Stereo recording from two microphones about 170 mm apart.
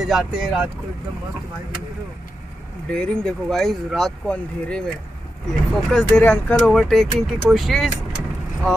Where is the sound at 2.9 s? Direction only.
5° left (ahead or behind).